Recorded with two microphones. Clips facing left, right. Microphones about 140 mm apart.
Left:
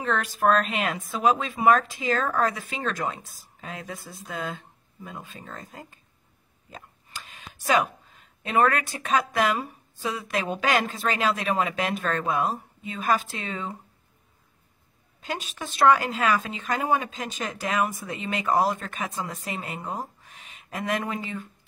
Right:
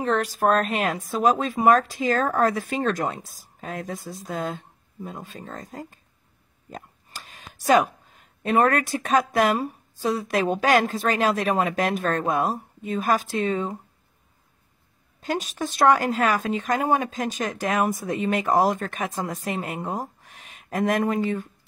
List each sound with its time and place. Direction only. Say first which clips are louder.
0.0 s speech: right 2 dB; 40° right (ahead or behind)
7.2 s a sound: right 6 dB; 50° right (ahead or behind)
8.1 s speech: right 4 dB; 50° right (ahead or behind)
15.2 s speech: right 6 dB; 45° right (ahead or behind)